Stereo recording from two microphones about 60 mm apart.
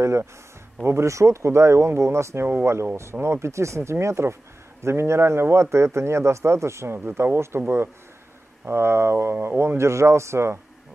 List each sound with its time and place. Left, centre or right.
0.8 s a man's voice: right